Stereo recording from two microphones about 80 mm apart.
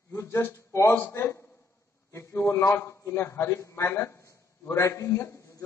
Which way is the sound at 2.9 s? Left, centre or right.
Left.